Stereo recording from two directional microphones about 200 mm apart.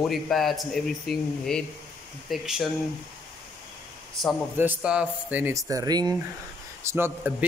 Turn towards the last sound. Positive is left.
turn(degrees=-10)  # may be behind; listen again after turning